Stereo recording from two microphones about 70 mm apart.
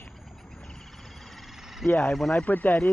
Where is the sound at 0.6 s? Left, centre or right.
Centre.